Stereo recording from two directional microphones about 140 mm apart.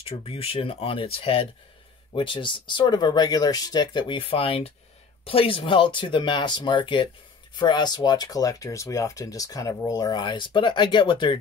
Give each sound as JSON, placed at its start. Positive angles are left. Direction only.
{"t": 0.0, "sound": "speech", "side_deg": 45}